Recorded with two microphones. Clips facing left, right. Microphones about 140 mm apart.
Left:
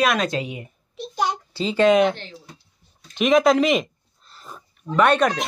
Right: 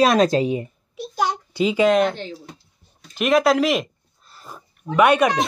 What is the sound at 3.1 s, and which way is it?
Speech, 5° right (ahead or behind).